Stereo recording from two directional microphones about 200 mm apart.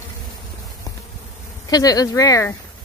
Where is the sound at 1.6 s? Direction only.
20° left (ahead or behind).